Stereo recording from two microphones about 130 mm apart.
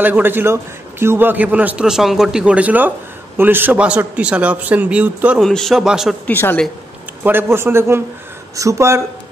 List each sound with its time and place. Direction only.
0.0 s a man's voice: 15° right (ahead or behind)
5.4 s a man's voice: 5° left (ahead or behind)
6.2 s a woman's voice: 15° left (ahead or behind)
7.2 s a man's voice: 15° right (ahead or behind)